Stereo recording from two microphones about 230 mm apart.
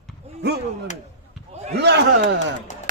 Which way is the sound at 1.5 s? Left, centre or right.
Right.